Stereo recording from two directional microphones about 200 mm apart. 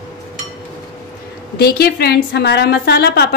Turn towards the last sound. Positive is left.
turn(degrees=55)  # may be behind; listen again after turning